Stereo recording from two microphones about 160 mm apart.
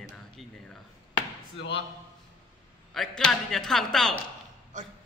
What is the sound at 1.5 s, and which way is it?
Speech, 90° left.